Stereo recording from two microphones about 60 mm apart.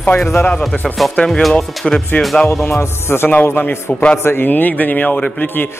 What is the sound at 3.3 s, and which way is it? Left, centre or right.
Speech, left.